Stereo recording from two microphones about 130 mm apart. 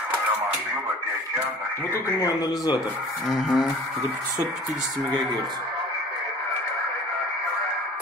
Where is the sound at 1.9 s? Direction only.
25° left (ahead or behind).